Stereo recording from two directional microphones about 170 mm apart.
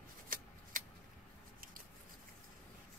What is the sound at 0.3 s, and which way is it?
Shuffling cards, 55° right (ahead or behind).